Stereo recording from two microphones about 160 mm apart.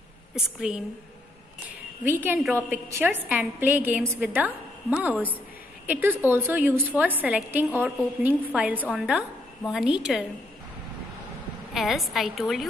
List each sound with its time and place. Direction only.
0.6 s a woman's voice: 5° right (ahead or behind)
2.0 s a woman's voice: 15° right (ahead or behind)
11.7 s a woman's voice: centre (ahead or behind)